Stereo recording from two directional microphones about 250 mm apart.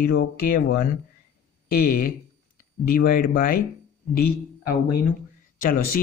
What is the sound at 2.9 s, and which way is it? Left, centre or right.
Speech, left.